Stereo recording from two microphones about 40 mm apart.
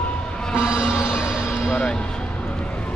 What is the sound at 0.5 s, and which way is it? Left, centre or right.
Music, right.